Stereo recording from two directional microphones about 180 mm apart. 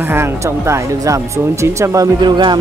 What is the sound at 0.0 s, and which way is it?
Speech, 15° right (ahead or behind).